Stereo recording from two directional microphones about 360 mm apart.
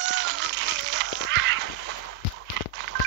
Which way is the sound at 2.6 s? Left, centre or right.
Right.